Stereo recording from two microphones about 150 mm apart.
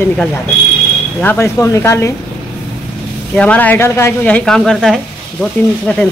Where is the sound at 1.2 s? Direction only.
10° left (ahead or behind).